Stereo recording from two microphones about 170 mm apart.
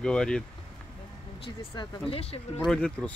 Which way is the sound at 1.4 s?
35° left (ahead or behind).